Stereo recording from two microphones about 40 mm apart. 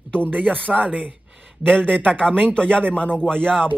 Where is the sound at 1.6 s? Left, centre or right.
Centre.